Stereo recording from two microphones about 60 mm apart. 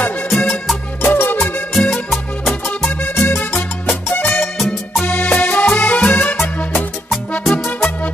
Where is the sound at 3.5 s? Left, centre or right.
Left.